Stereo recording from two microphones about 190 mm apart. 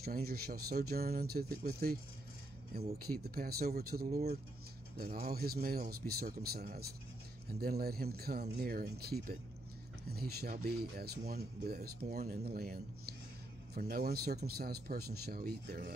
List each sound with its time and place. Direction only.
0.0 s speech: 55° right (ahead or behind)
3.0 s speech: 55° right (ahead or behind)